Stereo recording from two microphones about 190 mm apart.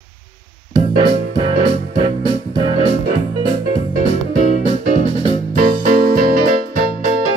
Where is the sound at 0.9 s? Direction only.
25° right (ahead or behind).